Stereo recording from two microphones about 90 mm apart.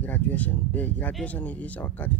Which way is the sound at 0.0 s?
20° left (ahead or behind).